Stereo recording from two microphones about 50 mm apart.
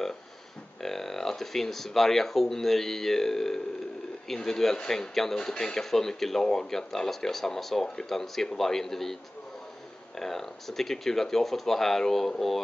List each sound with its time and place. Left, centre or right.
0.8 s speech: centre